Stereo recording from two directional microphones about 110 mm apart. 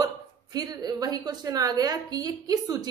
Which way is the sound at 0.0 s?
35° right (ahead or behind).